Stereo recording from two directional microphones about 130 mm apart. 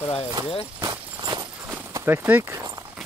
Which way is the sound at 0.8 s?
30° right (ahead or behind).